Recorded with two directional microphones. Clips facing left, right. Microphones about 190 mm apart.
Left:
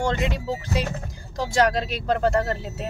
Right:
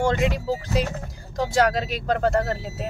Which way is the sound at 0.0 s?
Centre (ahead or behind).